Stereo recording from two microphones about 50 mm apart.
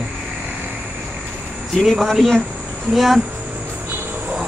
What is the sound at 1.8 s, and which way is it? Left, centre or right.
Speech, centre.